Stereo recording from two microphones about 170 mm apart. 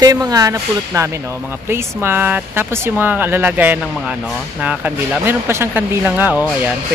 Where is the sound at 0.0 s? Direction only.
20° right (ahead or behind).